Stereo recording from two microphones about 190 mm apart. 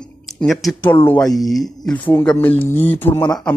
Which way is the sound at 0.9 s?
10° left (ahead or behind).